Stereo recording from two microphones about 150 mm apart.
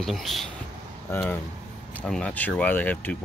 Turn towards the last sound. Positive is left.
turn(degrees=10)  # may be behind; listen again after turning